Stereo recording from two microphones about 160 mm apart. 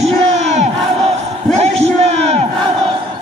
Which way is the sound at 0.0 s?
45° right (ahead or behind).